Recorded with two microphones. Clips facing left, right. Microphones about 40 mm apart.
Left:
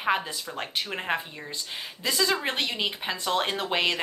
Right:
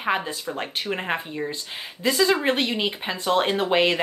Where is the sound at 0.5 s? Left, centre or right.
Centre.